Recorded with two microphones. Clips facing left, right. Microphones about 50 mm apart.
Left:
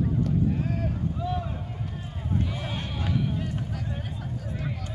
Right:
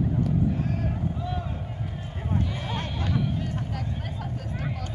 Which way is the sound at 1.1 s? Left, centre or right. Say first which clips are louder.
Left 2 dB; centre.